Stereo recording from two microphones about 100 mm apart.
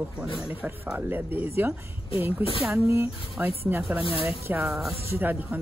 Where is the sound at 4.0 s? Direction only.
65° left (ahead or behind).